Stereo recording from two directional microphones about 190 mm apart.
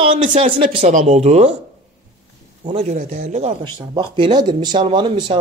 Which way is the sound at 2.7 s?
35° right (ahead or behind).